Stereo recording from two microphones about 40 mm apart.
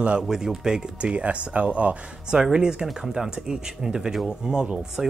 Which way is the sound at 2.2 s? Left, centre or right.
Centre.